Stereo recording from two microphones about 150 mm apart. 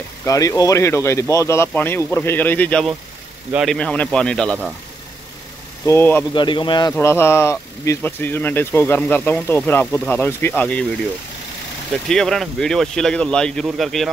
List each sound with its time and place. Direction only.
0.2 s speech: 20° left (ahead or behind); by 4.7 s 5° left (ahead or behind)
5.9 s speech: 15° left (ahead or behind)
6.3 s speech: 30° left (ahead or behind)
6.9 s speech: 15° left (ahead or behind)
12.1 s speech: centre (ahead or behind)